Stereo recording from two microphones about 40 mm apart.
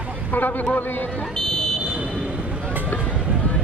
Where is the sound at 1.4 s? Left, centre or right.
Centre.